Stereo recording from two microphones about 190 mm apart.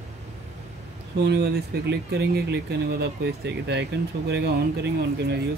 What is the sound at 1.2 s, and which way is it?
Speech, 60° right (ahead or behind).